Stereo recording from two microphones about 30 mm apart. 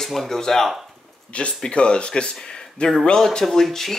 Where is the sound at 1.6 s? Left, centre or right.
Left.